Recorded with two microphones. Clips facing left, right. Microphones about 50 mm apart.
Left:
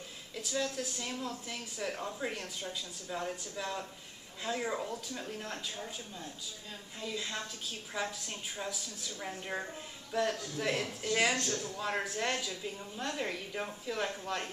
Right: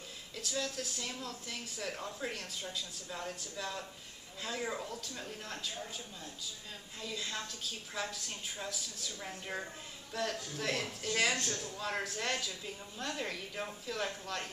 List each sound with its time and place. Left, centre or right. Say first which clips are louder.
0.3 s speech: left 3 dB; centre
7.0 s speech: left 2 dB; centre
11.5 s a man's voice: left 4 dB; left
11.8 s speech: left 2 dB; centre